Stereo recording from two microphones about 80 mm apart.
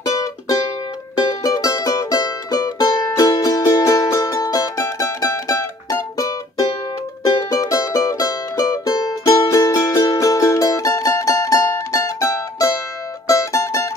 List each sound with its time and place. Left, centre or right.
0.0 s music: left
7.4 s music: left